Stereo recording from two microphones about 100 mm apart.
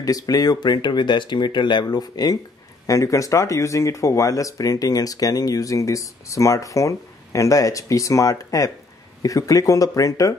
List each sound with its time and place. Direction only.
0.0 s speech: 40° left (ahead or behind)